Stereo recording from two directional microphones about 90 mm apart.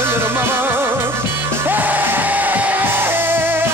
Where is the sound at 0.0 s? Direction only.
25° right (ahead or behind).